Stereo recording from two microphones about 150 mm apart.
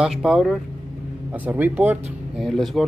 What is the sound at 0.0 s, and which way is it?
Speech, 5° right (ahead or behind).